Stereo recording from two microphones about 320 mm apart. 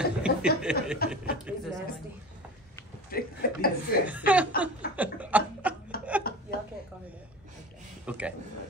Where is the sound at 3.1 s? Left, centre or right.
Left.